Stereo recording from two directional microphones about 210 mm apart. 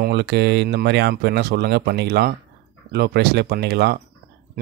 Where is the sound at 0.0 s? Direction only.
55° right (ahead or behind).